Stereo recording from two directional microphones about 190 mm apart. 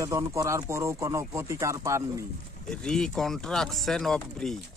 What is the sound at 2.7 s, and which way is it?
Speech, 5° left (ahead or behind).